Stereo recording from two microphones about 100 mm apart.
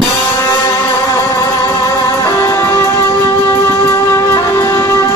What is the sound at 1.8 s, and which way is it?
Music, 30° left (ahead or behind).